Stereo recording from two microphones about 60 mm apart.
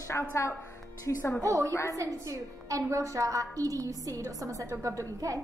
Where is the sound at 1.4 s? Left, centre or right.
Right.